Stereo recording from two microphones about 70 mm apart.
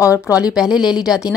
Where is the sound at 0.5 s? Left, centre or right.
Centre.